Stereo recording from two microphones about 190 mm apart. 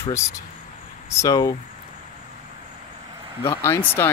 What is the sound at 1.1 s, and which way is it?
Speech, 20° left (ahead or behind).